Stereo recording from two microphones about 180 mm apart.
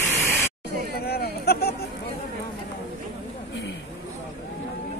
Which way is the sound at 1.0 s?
60° left (ahead or behind).